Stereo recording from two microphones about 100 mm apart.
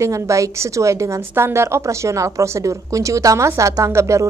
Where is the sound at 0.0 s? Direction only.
30° right (ahead or behind).